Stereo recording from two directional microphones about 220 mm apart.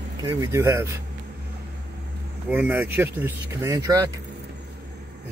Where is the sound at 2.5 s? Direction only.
10° right (ahead or behind).